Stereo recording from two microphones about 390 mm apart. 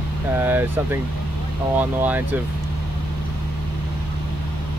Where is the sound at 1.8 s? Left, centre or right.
Centre.